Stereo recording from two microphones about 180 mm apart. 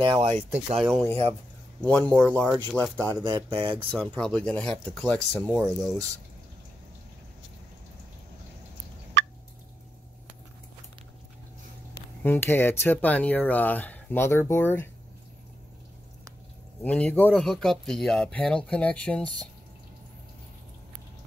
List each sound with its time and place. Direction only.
0.0 s speech: 30° right (ahead or behind)
0.7 s speech: centre (ahead or behind)
3.3 s speech: 20° right (ahead or behind)
3.9 s speech: 5° left (ahead or behind)
9.2 s fowl: 90° right
12.2 s speech: 10° left (ahead or behind)
16.8 s speech: 5° left (ahead or behind)